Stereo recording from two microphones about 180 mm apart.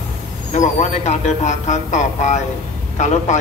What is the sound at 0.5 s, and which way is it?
Speech, 40° left (ahead or behind).